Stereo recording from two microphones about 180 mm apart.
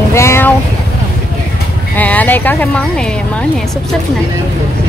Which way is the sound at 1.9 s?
10° left (ahead or behind).